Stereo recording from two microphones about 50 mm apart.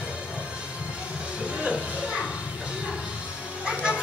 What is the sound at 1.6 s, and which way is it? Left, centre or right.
Music, centre.